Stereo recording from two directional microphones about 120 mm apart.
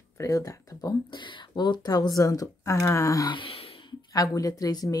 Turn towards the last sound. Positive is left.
turn(degrees=30)  # may be behind; listen again after turning